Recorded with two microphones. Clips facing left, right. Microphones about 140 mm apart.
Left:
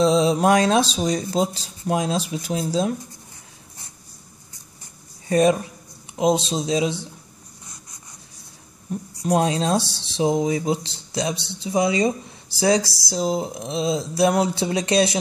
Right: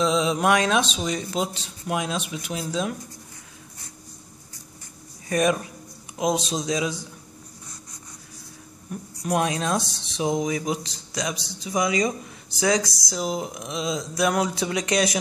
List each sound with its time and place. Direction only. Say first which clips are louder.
0.0 s speech: left 4 dB; 35° left (ahead or behind)
5.3 s speech: left 4 dB; 30° left (ahead or behind)
8.9 s speech: left 4 dB; 30° left (ahead or behind)